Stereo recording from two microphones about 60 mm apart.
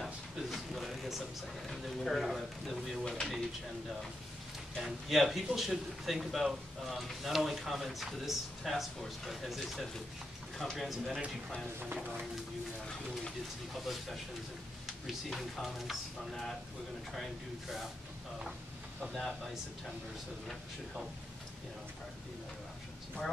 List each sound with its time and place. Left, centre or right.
0.0 s a sound: centre
1.7 s speech: centre
4.7 s speech: centre
11.8 s speech: right
15.2 s speech: centre
19.1 s speech: centre